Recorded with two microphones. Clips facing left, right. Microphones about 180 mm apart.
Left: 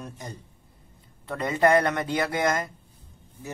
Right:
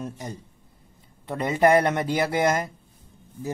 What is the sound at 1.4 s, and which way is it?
Speech, 25° right (ahead or behind).